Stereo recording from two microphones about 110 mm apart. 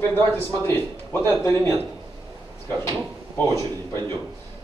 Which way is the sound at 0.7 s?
20° left (ahead or behind).